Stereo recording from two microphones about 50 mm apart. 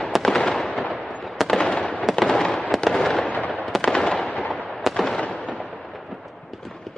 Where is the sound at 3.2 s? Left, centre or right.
Left.